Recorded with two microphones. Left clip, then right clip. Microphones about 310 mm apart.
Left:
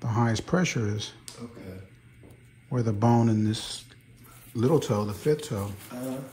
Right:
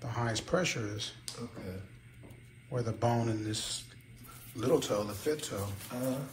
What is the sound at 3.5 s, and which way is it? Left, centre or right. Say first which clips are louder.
Speech: left 4 dB; left.